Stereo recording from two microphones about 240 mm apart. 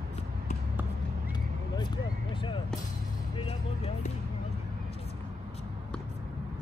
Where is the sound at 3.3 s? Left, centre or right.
Left.